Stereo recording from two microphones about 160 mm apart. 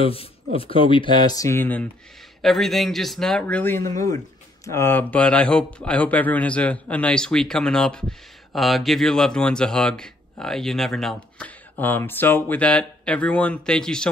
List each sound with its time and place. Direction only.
0.0 s speech: 35° left (ahead or behind); by 1.9 s 10° left (ahead or behind)
2.4 s a man's voice: centre (ahead or behind)